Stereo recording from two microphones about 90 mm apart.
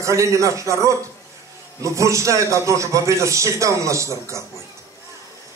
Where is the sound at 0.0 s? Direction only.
35° right (ahead or behind).